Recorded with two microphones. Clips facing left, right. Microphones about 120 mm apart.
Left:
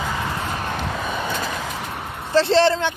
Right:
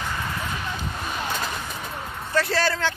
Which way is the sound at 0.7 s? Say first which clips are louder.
Left 5 dB; 70° left (ahead or behind).